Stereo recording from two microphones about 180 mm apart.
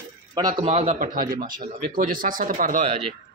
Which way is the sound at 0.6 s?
35° right (ahead or behind).